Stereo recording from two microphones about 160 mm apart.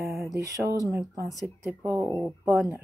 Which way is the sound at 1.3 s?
Centre (ahead or behind).